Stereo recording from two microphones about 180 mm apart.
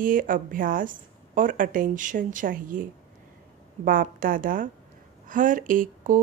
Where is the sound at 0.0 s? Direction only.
50° right (ahead or behind).